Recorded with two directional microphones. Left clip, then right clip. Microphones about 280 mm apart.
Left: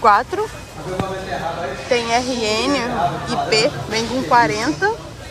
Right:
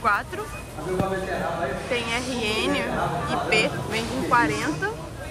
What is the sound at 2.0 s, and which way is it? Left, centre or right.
Speech, centre.